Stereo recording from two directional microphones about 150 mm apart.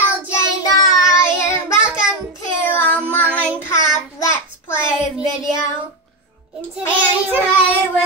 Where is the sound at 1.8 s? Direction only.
5° right (ahead or behind).